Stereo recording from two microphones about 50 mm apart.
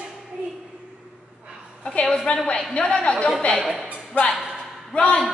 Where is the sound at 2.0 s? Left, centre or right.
Centre.